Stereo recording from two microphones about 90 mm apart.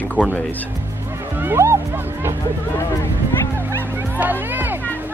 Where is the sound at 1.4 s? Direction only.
25° right (ahead or behind).